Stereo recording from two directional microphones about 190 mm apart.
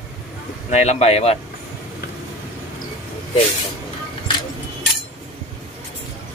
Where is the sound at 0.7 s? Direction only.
35° left (ahead or behind).